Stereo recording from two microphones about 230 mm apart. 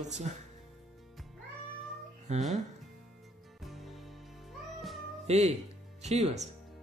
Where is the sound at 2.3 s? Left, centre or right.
Right.